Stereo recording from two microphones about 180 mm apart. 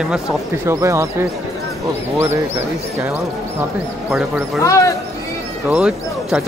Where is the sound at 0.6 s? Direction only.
15° right (ahead or behind).